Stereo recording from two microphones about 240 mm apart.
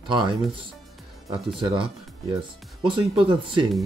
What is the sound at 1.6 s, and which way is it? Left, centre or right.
Speech, right.